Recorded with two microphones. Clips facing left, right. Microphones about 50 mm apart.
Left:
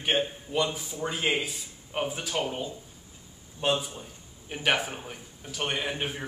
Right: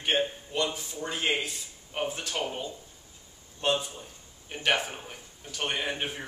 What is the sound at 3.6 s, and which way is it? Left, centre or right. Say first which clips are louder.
A man's voice: left 1 dB; centre.